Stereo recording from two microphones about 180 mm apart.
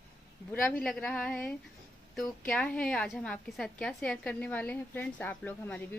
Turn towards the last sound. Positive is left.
turn(degrees=10)  # may be behind; listen again after turning